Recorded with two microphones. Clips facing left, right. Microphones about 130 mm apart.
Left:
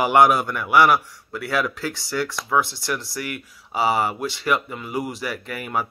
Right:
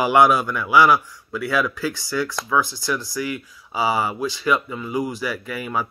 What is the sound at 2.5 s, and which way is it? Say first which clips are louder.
Speech: even; 25° left (ahead or behind).